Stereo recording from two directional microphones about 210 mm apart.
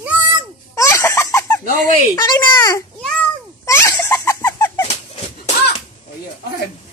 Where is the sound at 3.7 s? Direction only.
10° left (ahead or behind).